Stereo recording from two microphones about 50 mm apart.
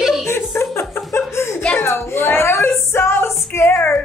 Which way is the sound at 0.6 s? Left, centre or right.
Left.